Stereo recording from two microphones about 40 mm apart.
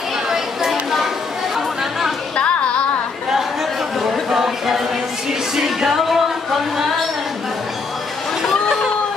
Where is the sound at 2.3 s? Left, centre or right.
Left.